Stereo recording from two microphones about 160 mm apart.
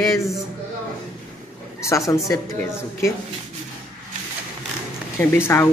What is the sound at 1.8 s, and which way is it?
Speech, 20° left (ahead or behind).